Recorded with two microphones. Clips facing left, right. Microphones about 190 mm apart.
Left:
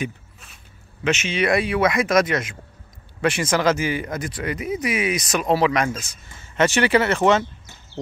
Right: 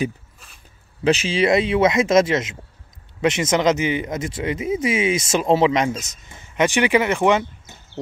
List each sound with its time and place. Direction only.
1.0 s speech: 35° right (ahead or behind); by 8.0 s 15° right (ahead or behind)